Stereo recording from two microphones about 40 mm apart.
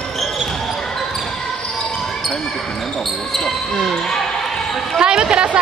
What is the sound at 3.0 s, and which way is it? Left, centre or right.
Basketball bounce, centre.